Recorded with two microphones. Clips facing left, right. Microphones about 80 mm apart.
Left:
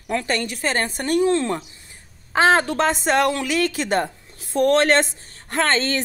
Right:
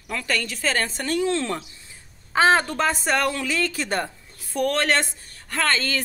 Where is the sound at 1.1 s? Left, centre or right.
Left.